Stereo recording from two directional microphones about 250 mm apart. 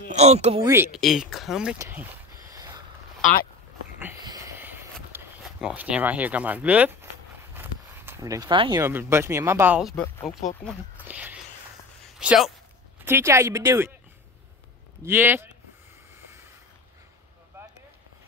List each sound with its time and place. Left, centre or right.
0.1 s speech: right
0.7 s speech: centre
4.0 s wheeze: centre
5.1 s speech: centre
10.6 s a sound: centre
12.2 s speech: centre
15.0 s speech: centre